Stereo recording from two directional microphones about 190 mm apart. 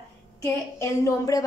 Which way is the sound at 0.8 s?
15° left (ahead or behind).